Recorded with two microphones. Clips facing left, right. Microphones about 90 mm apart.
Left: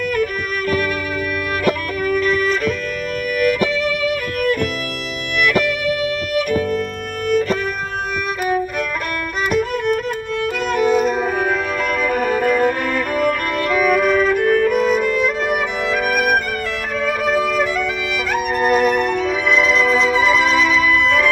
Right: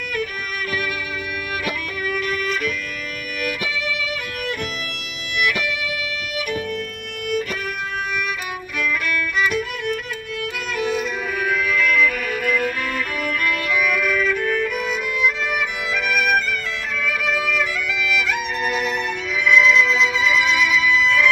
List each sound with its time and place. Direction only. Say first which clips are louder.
0.1 s music: left 7 dB; 40° left (ahead or behind)
8.5 s violin: left 6 dB; 40° left (ahead or behind)
10.4 s music: left 7 dB; 40° left (ahead or behind)